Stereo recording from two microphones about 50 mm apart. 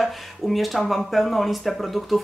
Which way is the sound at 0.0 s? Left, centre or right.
Centre.